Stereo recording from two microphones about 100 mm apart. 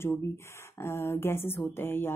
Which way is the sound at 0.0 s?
25° left (ahead or behind).